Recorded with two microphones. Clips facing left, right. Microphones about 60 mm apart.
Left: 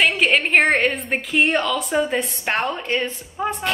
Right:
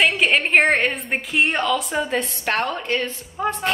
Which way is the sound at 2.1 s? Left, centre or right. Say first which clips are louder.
Even; centre.